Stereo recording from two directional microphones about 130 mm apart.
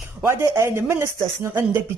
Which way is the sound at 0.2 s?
20° right (ahead or behind).